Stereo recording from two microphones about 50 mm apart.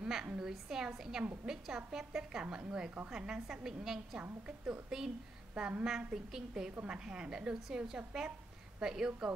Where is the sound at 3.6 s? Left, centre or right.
Centre.